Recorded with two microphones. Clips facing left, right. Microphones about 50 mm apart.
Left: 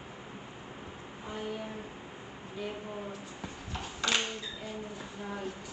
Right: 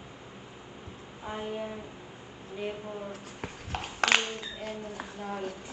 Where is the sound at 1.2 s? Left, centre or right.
Right.